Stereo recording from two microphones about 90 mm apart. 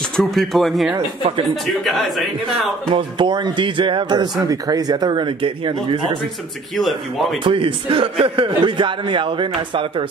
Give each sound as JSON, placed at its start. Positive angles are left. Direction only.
{"t": 0.1, "sound": "speech", "side_deg": 5}
{"t": 2.9, "sound": "speech", "side_deg": -65}
{"t": 6.7, "sound": "speech", "side_deg": 0}
{"t": 7.4, "sound": "a man's voice", "side_deg": -75}